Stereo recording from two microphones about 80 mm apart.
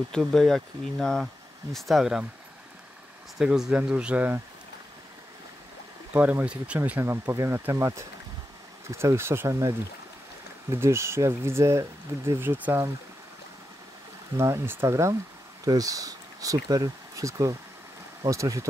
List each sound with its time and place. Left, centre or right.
0.3 s speech: centre
3.3 s speech: centre
6.1 s speech: centre
7.0 s speech: right
12.4 s speech: right
14.3 s speech: right